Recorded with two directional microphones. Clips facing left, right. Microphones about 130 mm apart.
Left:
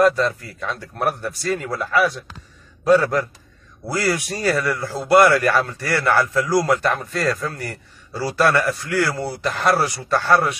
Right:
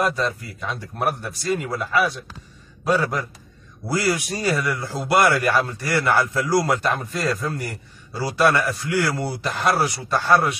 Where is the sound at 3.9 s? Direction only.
20° right (ahead or behind).